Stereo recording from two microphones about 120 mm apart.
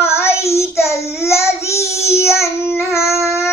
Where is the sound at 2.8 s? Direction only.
25° left (ahead or behind).